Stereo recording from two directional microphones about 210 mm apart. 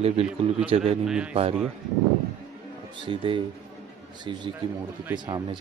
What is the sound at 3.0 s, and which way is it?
A man's voice, 25° right (ahead or behind).